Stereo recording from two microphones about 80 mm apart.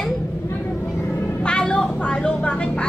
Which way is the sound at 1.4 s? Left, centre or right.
Centre.